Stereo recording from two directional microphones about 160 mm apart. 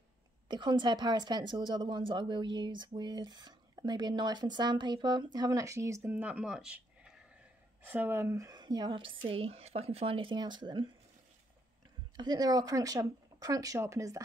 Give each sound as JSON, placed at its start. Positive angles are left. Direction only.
{"t": 0.5, "sound": "a woman's voice", "side_deg": -30}
{"t": 12.2, "sound": "a woman's voice", "side_deg": -25}